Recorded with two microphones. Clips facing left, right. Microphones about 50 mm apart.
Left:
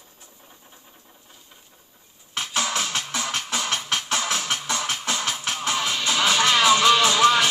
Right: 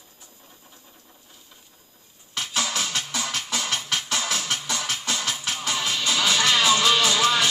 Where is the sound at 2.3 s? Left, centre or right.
Left.